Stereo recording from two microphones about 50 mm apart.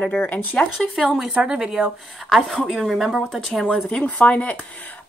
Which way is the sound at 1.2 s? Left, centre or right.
Centre.